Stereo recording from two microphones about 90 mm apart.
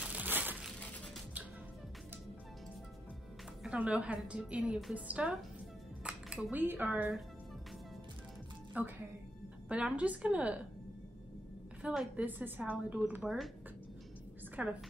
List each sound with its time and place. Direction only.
0.0 s crushing: 15° right (ahead or behind)
3.6 s a woman's voice: 15° right (ahead or behind)
4.9 s a woman's voice: 15° right (ahead or behind)
6.0 s dishes: 15° right (ahead or behind)
6.5 s a woman's voice: 20° right (ahead or behind)
9.7 s a woman's voice: 15° right (ahead or behind)
11.8 s a woman's voice: 5° right (ahead or behind)
12.3 s a woman's voice: 20° right (ahead or behind)
13.2 s speech: centre (ahead or behind)
14.5 s a woman's voice: 15° right (ahead or behind)